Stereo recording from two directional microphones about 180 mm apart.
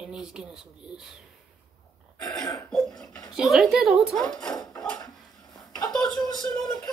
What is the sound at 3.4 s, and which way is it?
A woman's voice, centre (ahead or behind).